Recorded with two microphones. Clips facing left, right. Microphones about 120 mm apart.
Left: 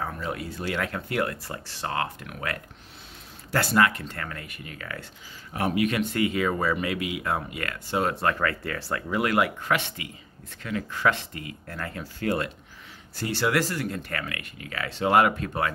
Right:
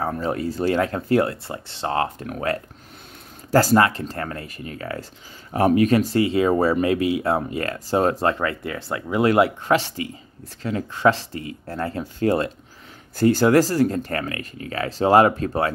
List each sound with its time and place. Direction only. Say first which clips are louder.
0.0 s speech: right 7 dB; 40° right (ahead or behind)
8.4 s speech: right 3 dB; 20° right (ahead or behind)
13.1 s speech: right 10 dB; 45° right (ahead or behind)